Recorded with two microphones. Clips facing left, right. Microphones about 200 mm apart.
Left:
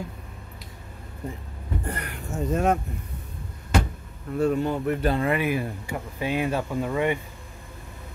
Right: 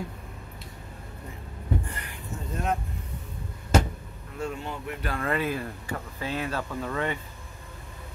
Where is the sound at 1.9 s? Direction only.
65° left (ahead or behind).